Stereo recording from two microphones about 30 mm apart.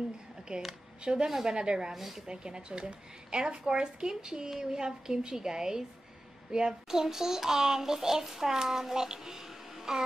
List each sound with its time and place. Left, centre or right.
1.2 s a woman's voice: centre
2.0 s a child's voice: centre
2.2 s a woman's voice: right